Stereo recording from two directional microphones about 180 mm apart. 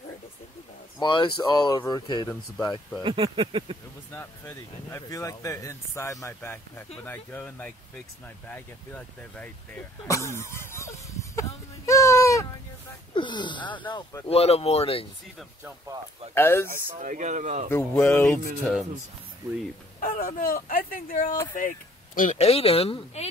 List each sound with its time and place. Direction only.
0.9 s speech: 25° left (ahead or behind)
3.0 s speech: 30° right (ahead or behind)
4.1 s speech: 10° left (ahead or behind); by 15.0 s 35° left (ahead or behind)
16.3 s speech: 15° left (ahead or behind)
16.9 s speech: 45° right (ahead or behind)
17.9 s speech: 10° left (ahead or behind)
20.0 s speech: 50° left (ahead or behind); by 23.2 s 35° left (ahead or behind)